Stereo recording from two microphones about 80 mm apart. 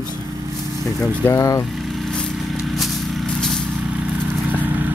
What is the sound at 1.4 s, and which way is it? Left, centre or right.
Speech, left.